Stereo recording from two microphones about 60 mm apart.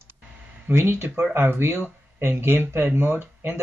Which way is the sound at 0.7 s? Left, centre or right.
Right.